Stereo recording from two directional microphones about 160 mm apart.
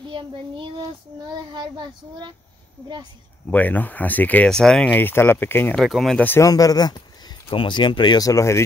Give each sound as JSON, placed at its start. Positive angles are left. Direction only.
{"t": 0.0, "sound": "a child's voice", "side_deg": -30}
{"t": 3.4, "sound": "speech", "side_deg": 10}
{"t": 5.8, "sound": "speech", "side_deg": 0}